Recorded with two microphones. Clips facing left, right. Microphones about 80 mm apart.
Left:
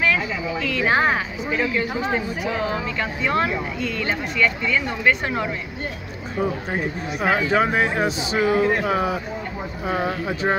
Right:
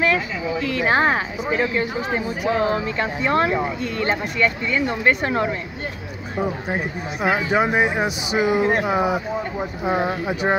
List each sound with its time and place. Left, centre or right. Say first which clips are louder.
0.0 s speech: right 1 dB; right
7.2 s speech: even; centre